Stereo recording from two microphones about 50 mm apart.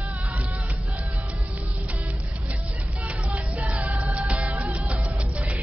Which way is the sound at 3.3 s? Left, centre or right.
Right.